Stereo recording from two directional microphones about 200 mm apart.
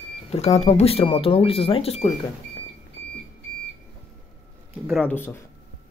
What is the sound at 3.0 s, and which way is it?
Alarm clock, 60° left (ahead or behind).